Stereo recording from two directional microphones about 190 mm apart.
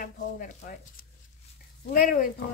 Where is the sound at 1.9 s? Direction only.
45° left (ahead or behind).